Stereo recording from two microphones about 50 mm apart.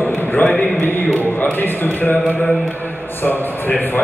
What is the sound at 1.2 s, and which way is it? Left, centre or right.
Speech, left.